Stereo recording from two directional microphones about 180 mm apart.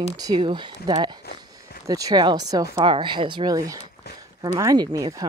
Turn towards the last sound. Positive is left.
turn(degrees=-20)  # may be behind; listen again after turning